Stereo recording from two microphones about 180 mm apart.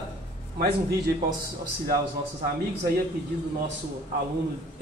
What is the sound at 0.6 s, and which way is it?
Speech, 60° right (ahead or behind).